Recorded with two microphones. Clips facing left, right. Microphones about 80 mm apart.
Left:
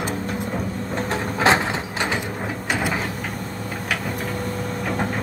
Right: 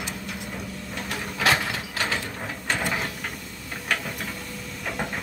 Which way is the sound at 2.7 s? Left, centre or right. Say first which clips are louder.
Left 3 dB; centre.